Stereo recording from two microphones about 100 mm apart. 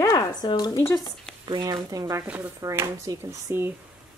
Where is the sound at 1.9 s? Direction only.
35° right (ahead or behind).